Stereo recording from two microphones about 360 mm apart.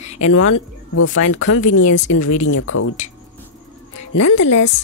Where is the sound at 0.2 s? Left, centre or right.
Left.